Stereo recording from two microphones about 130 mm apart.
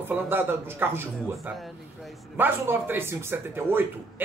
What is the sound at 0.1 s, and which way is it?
A man's voice, 15° right (ahead or behind).